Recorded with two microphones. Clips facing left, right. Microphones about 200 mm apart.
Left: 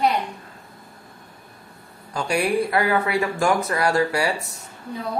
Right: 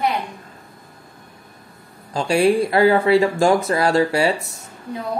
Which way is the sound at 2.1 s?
25° right (ahead or behind).